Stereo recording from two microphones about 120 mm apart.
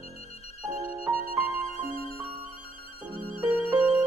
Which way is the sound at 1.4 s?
55° left (ahead or behind).